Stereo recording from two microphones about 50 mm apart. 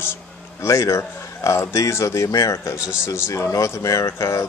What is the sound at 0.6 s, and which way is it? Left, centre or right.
A man's voice, left.